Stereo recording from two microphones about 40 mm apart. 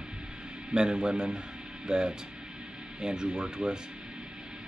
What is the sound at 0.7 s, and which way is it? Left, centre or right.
Speech, centre.